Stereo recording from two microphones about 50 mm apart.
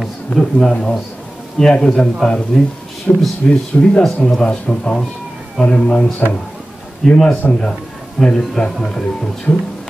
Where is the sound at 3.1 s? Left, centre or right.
Left.